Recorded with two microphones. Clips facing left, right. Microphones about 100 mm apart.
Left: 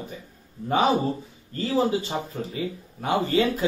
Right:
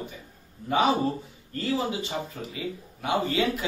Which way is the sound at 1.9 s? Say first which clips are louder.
Left 6 dB; 35° left (ahead or behind).